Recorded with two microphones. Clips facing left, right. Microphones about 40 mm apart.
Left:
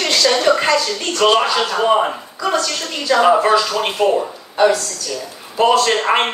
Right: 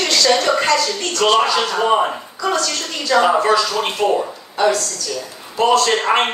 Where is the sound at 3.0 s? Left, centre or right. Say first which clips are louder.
Left 1 dB; centre.